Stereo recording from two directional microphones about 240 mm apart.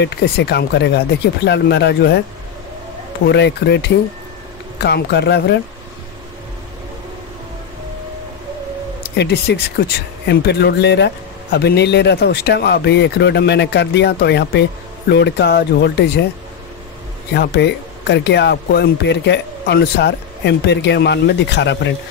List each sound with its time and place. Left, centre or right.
0.0 s speech: left
3.3 s speech: left
9.1 s speech: left
17.3 s speech: left